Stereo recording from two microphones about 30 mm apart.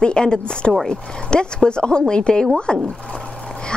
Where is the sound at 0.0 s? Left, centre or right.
Left.